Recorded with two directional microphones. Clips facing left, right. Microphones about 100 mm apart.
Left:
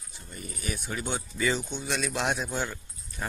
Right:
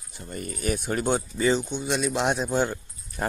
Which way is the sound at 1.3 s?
30° right (ahead or behind).